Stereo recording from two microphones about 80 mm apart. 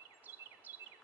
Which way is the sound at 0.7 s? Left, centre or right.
Right.